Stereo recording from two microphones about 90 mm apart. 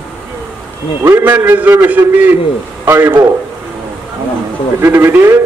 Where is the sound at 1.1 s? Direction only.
25° right (ahead or behind).